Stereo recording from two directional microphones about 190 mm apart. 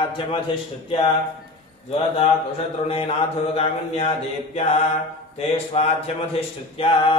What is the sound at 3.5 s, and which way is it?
Speech, 30° left (ahead or behind).